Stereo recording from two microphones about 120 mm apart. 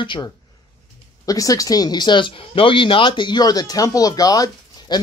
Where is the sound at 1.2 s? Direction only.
30° left (ahead or behind).